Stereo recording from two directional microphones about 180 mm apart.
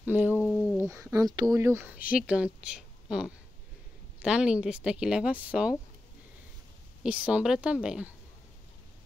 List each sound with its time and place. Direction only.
0.0 s speech: 10° right (ahead or behind)
0.4 s a sound: 5° left (ahead or behind)
0.7 s speech: 15° right (ahead or behind)
7.0 s speech: 5° right (ahead or behind)